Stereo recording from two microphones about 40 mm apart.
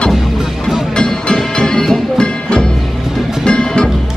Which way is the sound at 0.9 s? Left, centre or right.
Centre.